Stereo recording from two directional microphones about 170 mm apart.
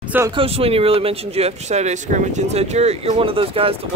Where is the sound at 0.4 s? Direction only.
35° right (ahead or behind).